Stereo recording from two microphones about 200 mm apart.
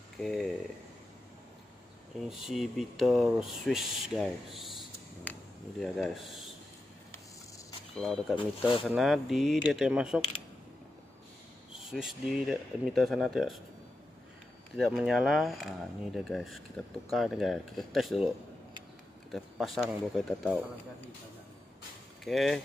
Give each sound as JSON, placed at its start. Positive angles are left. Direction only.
{"t": 0.2, "sound": "speech", "side_deg": 0}
{"t": 2.1, "sound": "speech", "side_deg": 0}
{"t": 4.6, "sound": "a sound", "side_deg": 0}
{"t": 7.9, "sound": "speech", "side_deg": 0}
{"t": 8.5, "sound": "speech", "side_deg": 25}
{"t": 8.8, "sound": "speech", "side_deg": 0}
{"t": 11.8, "sound": "speech", "side_deg": 0}
{"t": 14.8, "sound": "speech", "side_deg": 0}
{"t": 19.3, "sound": "speech", "side_deg": 0}
{"t": 22.2, "sound": "speech", "side_deg": 0}